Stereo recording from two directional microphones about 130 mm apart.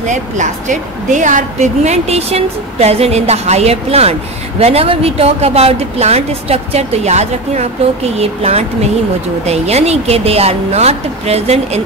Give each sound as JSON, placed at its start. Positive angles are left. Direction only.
{"t": 0.0, "sound": "a woman's voice", "side_deg": -70}